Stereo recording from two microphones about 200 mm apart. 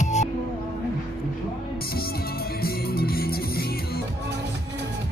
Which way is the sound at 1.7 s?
50° left (ahead or behind).